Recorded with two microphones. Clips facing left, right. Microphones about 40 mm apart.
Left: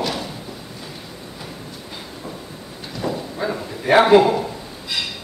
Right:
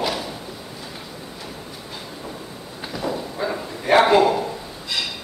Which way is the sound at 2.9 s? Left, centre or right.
Centre.